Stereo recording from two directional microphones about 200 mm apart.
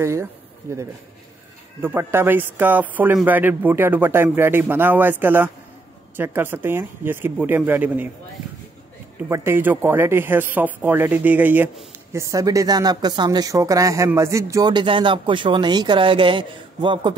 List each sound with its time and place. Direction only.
0.0 s speech: 15° right (ahead or behind)
9.3 s speech: 10° right (ahead or behind)